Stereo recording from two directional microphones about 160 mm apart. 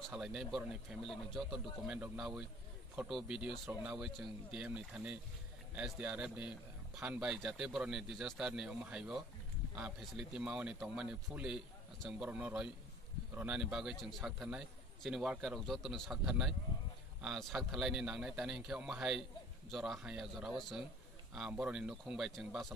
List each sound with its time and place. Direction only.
0.1 s a man's voice: 5° right (ahead or behind)